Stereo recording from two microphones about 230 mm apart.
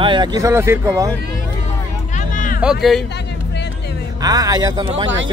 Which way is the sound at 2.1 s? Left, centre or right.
Left.